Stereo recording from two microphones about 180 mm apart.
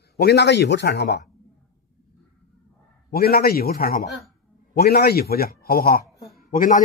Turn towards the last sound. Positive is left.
turn(degrees=50)  # may be behind; listen again after turning